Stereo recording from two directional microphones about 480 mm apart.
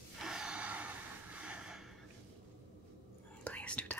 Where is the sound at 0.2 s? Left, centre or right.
Centre.